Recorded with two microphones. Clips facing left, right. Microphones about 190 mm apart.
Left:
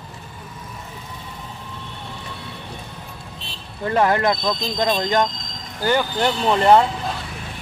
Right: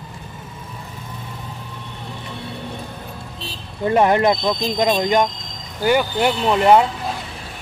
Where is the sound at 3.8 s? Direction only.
20° right (ahead or behind).